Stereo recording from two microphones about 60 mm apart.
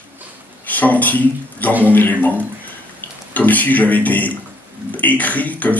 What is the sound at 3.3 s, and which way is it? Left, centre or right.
A man's voice, left.